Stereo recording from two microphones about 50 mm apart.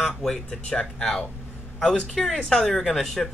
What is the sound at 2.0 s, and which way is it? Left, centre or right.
Speech, centre.